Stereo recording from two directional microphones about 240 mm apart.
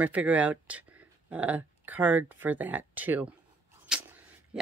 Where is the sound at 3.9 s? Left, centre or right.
Centre.